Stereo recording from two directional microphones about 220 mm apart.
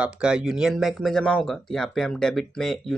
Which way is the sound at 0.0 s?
5° right (ahead or behind).